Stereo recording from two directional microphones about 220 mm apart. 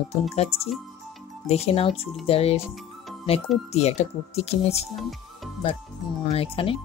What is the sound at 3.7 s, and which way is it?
Speech, 30° left (ahead or behind).